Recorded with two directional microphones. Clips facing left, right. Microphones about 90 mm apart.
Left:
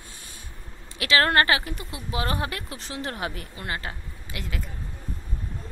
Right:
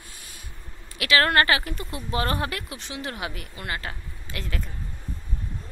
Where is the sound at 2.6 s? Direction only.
40° left (ahead or behind).